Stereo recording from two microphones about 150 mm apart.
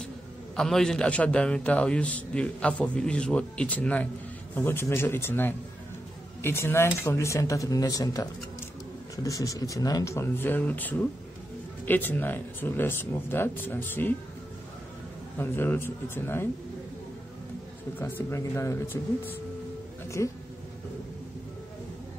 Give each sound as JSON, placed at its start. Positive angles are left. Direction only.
{"t": 0.6, "sound": "a man's voice", "side_deg": 5}
{"t": 15.3, "sound": "a man's voice", "side_deg": 15}
{"t": 17.9, "sound": "a man's voice", "side_deg": 15}